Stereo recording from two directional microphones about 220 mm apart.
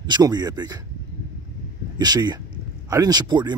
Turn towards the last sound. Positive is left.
turn(degrees=-20)  # may be behind; listen again after turning